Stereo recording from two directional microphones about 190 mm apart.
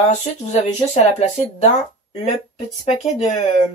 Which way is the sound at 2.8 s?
35° left (ahead or behind).